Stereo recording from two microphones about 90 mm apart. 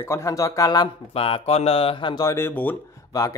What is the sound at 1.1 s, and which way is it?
Speech, 90° left.